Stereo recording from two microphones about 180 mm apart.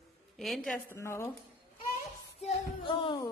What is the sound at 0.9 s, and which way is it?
Speech, 15° left (ahead or behind).